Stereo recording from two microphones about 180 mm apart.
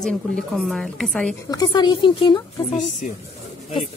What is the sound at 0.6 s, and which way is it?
Speech, centre (ahead or behind).